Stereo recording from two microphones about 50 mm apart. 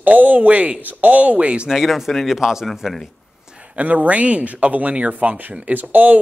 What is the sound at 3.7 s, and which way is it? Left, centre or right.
Speech, right.